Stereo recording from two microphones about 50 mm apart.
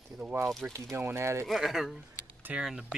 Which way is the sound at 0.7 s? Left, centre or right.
Right.